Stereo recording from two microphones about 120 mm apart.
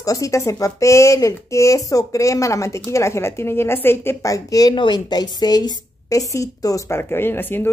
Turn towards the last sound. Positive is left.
turn(degrees=15)  # may be behind; listen again after turning